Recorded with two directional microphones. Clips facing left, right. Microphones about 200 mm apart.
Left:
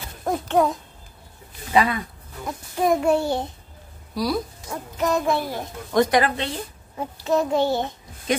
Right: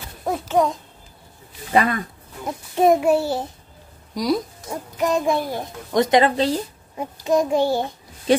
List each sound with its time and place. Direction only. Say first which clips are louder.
0.2 s a child's voice: even; centre (ahead or behind)
1.7 s speech: right 1 dB; 50° right (ahead or behind)
3.0 s a child's voice: right 1 dB; 5° right (ahead or behind)
4.1 s a child's voice: right 3 dB; 20° right (ahead or behind)
7.0 s a child's voice: right 2 dB; 15° right (ahead or behind)
8.3 s speech: right 6 dB; 30° right (ahead or behind)